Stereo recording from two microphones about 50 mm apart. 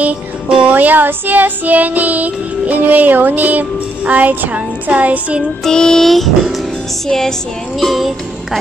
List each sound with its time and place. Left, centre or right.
0.0 s music: right
0.7 s child singing: right
5.6 s music: centre
6.0 s music: centre
7.8 s music: centre